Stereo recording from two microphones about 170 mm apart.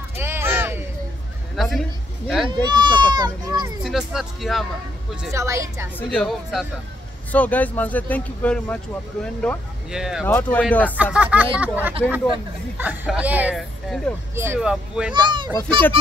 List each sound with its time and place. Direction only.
0.1 s a sound: 15° right (ahead or behind)
1.6 s a sound: centre (ahead or behind)
2.2 s speech: centre (ahead or behind)
2.5 s speech: 25° right (ahead or behind)
3.8 s speech: centre (ahead or behind)
5.3 s speech: 15° right (ahead or behind)
6.0 s speech: centre (ahead or behind)
10.2 s speech: 10° left (ahead or behind)
11.1 s speech: 10° right (ahead or behind)
15.1 s a child's voice: 25° right (ahead or behind)